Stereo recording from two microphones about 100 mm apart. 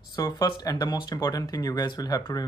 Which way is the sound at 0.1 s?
35° left (ahead or behind).